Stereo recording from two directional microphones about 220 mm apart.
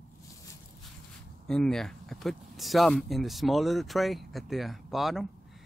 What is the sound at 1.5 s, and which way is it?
Speech, centre (ahead or behind).